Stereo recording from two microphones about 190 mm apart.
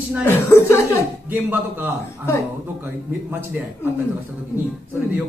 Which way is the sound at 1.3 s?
10° right (ahead or behind).